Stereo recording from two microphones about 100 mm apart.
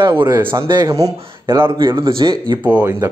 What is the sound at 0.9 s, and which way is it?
Speech, 30° right (ahead or behind).